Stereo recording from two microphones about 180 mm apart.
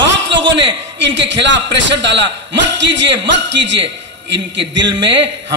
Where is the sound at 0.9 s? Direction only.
85° right.